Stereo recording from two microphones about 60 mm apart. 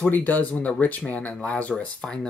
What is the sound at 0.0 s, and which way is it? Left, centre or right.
Speech, left.